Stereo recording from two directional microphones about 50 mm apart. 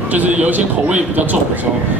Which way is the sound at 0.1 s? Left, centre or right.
Right.